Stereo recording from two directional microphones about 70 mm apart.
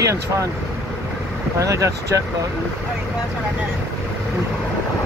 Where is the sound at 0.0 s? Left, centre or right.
Right.